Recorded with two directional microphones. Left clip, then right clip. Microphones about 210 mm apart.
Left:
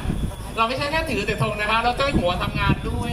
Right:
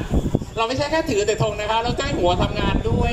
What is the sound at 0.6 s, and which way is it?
Speech, 30° right (ahead or behind).